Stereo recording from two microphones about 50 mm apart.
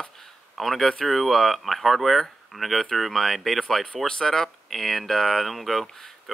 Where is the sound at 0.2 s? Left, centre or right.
Centre.